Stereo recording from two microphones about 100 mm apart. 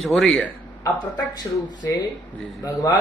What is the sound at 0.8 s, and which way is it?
Speech, 45° left (ahead or behind).